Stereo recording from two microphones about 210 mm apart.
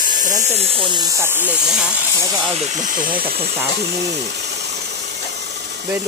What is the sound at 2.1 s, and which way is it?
Speech, 20° right (ahead or behind).